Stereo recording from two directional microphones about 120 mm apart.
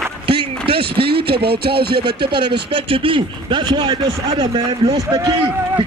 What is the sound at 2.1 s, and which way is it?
Speech, 45° right (ahead or behind).